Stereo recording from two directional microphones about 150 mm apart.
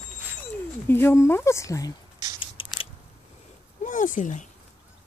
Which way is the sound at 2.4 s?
35° left (ahead or behind).